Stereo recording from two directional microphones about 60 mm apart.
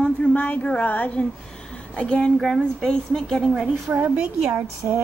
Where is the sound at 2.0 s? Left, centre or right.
Centre.